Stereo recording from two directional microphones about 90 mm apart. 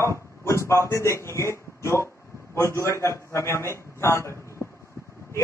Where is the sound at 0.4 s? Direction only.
30° left (ahead or behind).